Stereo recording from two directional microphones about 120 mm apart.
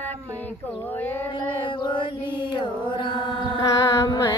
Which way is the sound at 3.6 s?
30° left (ahead or behind).